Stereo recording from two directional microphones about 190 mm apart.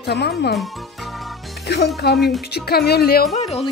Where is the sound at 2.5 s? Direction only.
55° left (ahead or behind).